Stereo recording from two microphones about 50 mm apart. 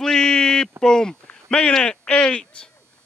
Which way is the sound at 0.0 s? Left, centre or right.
Centre.